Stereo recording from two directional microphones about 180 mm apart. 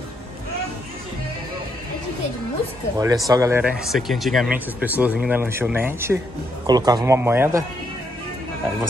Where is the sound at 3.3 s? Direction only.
15° right (ahead or behind).